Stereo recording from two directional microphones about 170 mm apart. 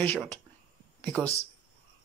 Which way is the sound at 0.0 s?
10° left (ahead or behind).